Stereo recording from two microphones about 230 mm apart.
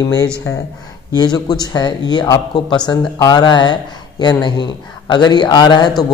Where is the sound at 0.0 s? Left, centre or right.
Centre.